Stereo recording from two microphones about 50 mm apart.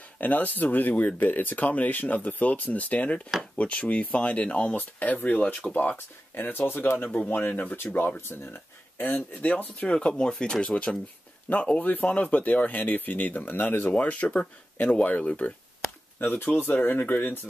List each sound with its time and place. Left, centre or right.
0.2 s speech: left
4.9 s speech: left
5.9 s speech: left
8.9 s speech: left
9.4 s speech: left
9.8 s speech: centre
11.5 s speech: left
16.2 s speech: left